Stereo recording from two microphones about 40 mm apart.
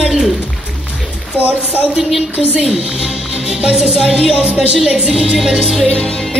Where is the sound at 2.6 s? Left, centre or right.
Centre.